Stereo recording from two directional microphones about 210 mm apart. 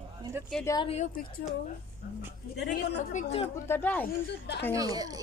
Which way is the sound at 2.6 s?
50° left (ahead or behind).